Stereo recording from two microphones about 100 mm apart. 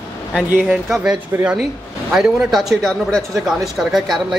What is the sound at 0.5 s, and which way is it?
Speech, 15° right (ahead or behind).